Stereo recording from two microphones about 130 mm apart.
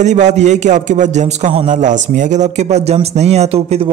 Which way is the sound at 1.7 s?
70° right (ahead or behind).